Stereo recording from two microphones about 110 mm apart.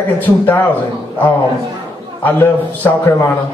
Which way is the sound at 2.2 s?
15° left (ahead or behind).